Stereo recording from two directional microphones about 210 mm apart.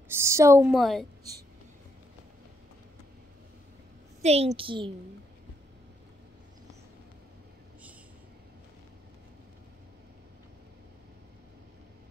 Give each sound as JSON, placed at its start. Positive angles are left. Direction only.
{"t": 0.1, "sound": "a woman's voice", "side_deg": -10}
{"t": 0.7, "sound": "a woman's voice", "side_deg": 0}
{"t": 4.2, "sound": "a woman's voice", "side_deg": -30}